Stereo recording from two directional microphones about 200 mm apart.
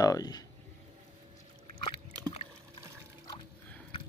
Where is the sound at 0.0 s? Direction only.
20° left (ahead or behind).